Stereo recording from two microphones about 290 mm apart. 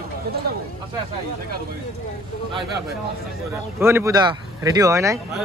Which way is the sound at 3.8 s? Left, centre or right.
Centre.